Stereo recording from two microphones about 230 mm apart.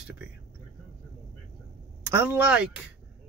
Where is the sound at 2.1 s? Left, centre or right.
Centre.